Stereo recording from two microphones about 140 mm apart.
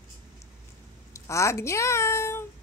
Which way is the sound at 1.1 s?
20° left (ahead or behind).